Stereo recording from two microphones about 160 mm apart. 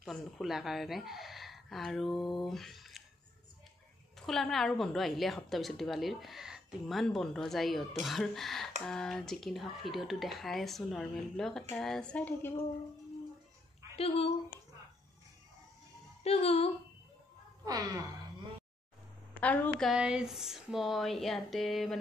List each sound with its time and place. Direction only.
0.0 s a woman's voice: centre (ahead or behind)
2.4 s a sound: centre (ahead or behind)
4.3 s a woman's voice: centre (ahead or behind)
13.9 s speech: 40° left (ahead or behind)
16.3 s speech: 40° left (ahead or behind)
17.6 s a woman's voice: 20° right (ahead or behind)
19.3 s a woman's voice: 10° left (ahead or behind)
19.9 s a woman's voice: 5° right (ahead or behind)